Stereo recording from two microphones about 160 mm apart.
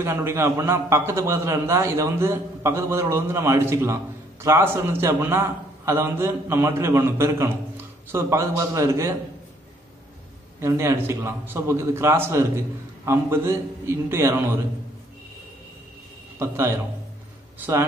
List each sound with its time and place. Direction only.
0.0 s a man's voice: 15° right (ahead or behind)
10.6 s a man's voice: 15° right (ahead or behind)
16.3 s a man's voice: 15° right (ahead or behind)